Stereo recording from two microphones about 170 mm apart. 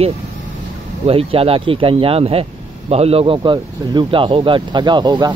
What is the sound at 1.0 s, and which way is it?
Speech, 35° right (ahead or behind).